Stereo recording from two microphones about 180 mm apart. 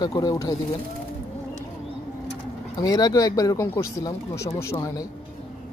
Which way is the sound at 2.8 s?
20° left (ahead or behind).